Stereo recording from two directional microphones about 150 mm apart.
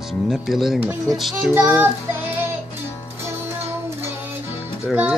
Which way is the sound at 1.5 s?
15° right (ahead or behind).